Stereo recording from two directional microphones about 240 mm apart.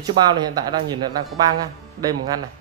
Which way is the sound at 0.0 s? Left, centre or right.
Centre.